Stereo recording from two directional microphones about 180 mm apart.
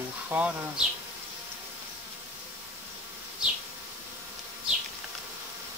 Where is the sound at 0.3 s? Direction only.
10° right (ahead or behind).